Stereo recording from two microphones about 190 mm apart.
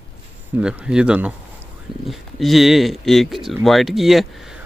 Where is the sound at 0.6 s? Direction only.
5° right (ahead or behind).